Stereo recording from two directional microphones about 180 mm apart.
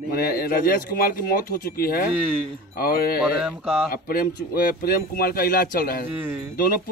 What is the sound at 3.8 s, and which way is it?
A man's voice, 55° left (ahead or behind).